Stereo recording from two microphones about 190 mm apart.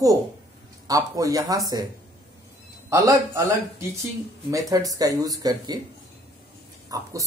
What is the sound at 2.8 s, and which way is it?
Speech, 15° right (ahead or behind).